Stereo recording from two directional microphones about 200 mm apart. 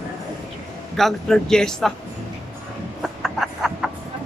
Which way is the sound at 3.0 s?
Centre (ahead or behind).